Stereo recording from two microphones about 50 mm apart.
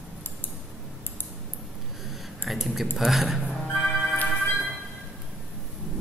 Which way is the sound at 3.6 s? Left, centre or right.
Left.